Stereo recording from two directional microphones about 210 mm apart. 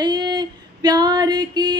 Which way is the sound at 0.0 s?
20° right (ahead or behind).